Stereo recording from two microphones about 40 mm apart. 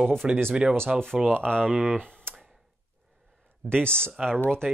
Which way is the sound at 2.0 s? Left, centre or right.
Left.